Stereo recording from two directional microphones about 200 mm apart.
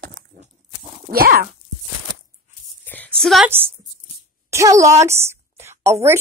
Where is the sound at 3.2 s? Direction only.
Centre (ahead or behind).